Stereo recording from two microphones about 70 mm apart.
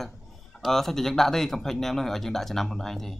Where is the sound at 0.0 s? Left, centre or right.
Centre.